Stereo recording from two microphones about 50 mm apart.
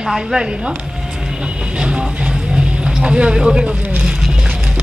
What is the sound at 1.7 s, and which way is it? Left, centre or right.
Music, centre.